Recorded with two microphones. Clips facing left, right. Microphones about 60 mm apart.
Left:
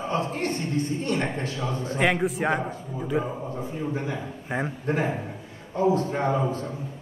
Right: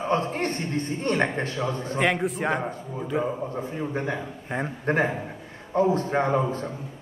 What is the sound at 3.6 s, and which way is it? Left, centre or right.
Speech, right.